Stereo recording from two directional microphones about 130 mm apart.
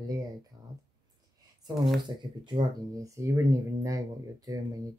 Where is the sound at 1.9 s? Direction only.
35° right (ahead or behind).